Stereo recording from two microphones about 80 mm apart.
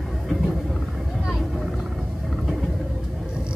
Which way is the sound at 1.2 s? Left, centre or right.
Centre.